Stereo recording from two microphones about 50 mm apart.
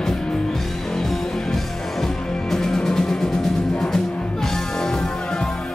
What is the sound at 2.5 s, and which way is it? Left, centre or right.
Music, centre.